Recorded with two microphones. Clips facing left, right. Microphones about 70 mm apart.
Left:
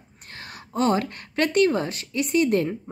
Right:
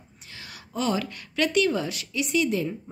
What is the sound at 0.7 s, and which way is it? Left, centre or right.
Speech, left.